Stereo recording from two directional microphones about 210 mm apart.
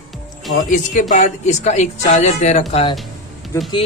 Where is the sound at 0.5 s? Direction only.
35° left (ahead or behind).